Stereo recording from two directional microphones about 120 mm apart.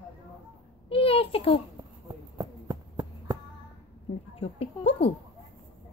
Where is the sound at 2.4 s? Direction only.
35° right (ahead or behind).